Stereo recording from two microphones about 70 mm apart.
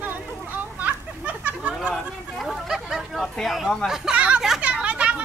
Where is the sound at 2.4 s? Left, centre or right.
Centre.